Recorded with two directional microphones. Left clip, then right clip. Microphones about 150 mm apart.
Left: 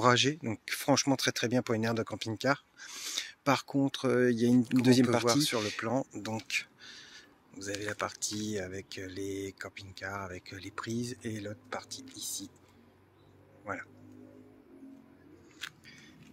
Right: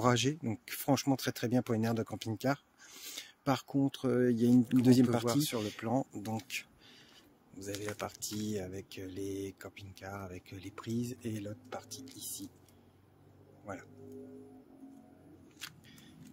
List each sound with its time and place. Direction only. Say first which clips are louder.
0.0 s speech: left 5 dB; 20° right (ahead or behind)
0.4 s speech: left 5 dB; 10° right (ahead or behind)
15.6 s a sound: left 5 dB; 5° right (ahead or behind)